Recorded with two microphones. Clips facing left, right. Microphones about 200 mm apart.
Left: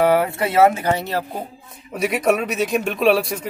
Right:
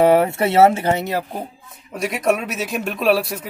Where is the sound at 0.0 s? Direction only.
25° right (ahead or behind).